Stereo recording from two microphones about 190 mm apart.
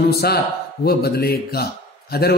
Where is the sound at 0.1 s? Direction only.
55° left (ahead or behind).